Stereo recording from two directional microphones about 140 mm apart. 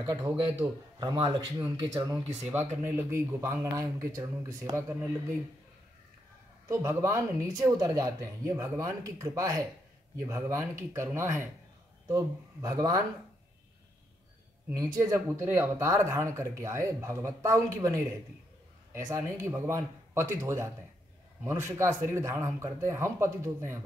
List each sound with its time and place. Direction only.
0.0 s speech: 30° right (ahead or behind)
2.5 s speech: 15° right (ahead or behind)
6.7 s speech: 20° right (ahead or behind)
14.7 s speech: 20° right (ahead or behind)